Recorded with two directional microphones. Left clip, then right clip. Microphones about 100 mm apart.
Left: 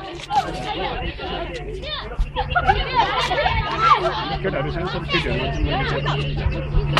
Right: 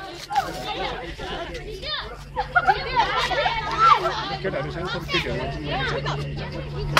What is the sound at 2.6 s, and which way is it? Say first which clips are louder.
Speech: left 2 dB; 35° right (ahead or behind).